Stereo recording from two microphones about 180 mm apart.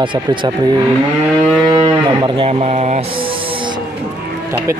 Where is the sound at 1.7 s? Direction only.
30° right (ahead or behind).